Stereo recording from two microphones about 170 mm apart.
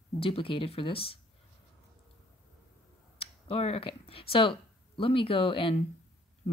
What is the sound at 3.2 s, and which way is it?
Speech, 35° left (ahead or behind).